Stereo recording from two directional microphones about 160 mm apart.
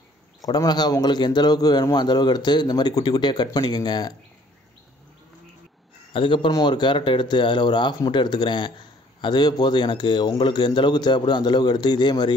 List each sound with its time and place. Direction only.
0.4 s speech: 25° left (ahead or behind)
6.1 s speech: 30° left (ahead or behind)